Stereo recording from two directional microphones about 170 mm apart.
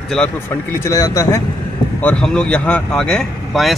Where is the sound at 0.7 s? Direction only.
20° left (ahead or behind).